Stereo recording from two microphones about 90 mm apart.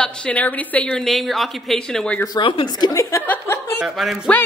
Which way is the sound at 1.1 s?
Centre (ahead or behind).